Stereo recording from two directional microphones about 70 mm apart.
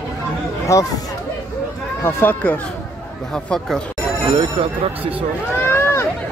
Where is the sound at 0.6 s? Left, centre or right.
Left.